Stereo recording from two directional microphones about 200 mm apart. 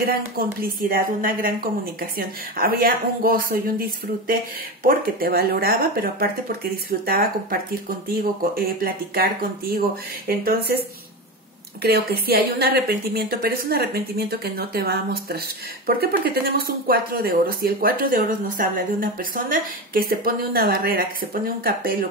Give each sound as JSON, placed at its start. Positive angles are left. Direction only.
{"t": 0.0, "sound": "speech", "side_deg": -45}
{"t": 4.8, "sound": "speech", "side_deg": -50}
{"t": 11.8, "sound": "speech", "side_deg": -50}